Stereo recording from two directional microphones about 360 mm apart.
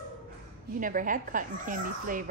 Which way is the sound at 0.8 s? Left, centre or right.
Right.